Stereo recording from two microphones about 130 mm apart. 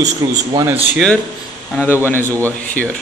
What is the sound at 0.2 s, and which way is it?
Speech, 30° right (ahead or behind).